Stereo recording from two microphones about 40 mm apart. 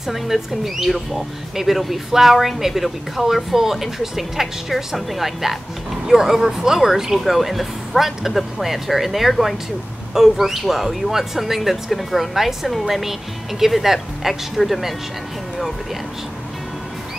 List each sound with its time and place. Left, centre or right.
0.0 s speech: centre
9.3 s speech: centre
10.1 s speech: centre